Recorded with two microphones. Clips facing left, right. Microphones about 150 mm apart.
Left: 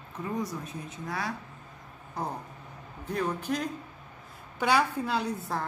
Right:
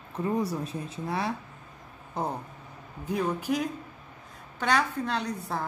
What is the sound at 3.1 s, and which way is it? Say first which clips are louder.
Speech: right 2 dB; 10° right (ahead or behind).